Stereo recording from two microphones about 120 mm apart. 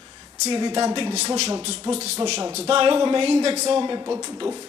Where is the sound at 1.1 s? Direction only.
65° right (ahead or behind).